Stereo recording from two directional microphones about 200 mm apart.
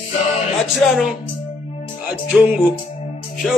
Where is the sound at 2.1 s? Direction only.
5° right (ahead or behind).